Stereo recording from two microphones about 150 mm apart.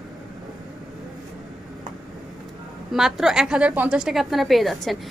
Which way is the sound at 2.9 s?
5° right (ahead or behind).